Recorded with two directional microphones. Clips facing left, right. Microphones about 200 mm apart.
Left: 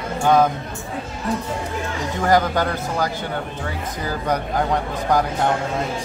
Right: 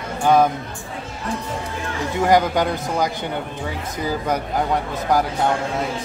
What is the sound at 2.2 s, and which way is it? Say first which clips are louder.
Speech: right 1 dB; 15° right (ahead or behind).